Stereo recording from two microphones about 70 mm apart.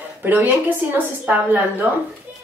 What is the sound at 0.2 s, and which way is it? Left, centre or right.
A woman's voice, right.